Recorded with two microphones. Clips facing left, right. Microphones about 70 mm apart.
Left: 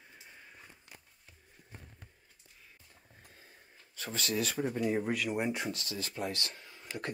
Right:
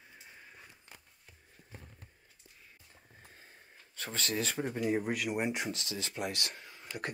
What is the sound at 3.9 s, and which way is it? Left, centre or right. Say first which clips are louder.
Speech: left 1 dB; right.